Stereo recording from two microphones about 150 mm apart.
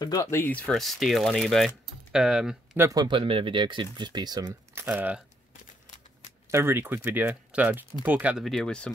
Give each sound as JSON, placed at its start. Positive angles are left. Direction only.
{"t": 0.0, "sound": "speech", "side_deg": 25}
{"t": 2.9, "sound": "speech", "side_deg": -30}
{"t": 4.7, "sound": "speech", "side_deg": -10}
{"t": 6.5, "sound": "speech", "side_deg": -15}
{"t": 8.5, "sound": "speech", "side_deg": 5}